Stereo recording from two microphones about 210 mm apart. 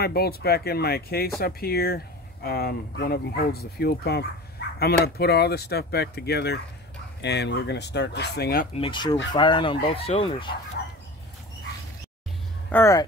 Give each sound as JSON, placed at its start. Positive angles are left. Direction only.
{"t": 0.0, "sound": "speech", "side_deg": 50}
{"t": 8.7, "sound": "speech", "side_deg": 25}
{"t": 12.7, "sound": "speech", "side_deg": 15}